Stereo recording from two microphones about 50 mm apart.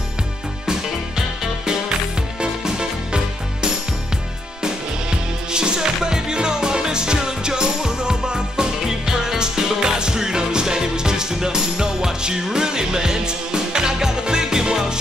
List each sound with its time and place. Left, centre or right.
0.7 s music: centre
5.5 s music: centre